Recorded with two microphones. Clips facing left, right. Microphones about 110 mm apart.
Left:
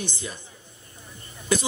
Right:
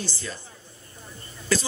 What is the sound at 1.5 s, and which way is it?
Speech, 20° left (ahead or behind).